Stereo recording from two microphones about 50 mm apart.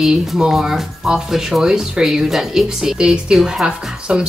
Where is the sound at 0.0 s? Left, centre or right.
Centre.